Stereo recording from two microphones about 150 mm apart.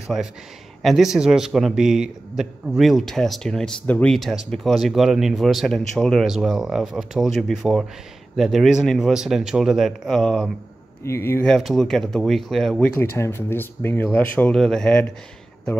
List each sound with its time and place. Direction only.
0.8 s a man's voice: centre (ahead or behind)
11.1 s speech: 15° left (ahead or behind)
11.4 s a man's voice: centre (ahead or behind)
12.9 s speech: 15° left (ahead or behind)